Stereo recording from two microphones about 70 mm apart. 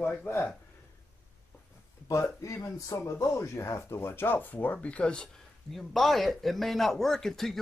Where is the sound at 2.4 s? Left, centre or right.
Left; by 5.3 s centre.